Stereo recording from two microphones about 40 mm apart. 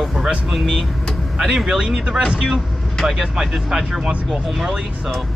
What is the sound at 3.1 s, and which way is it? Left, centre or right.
Speech, centre.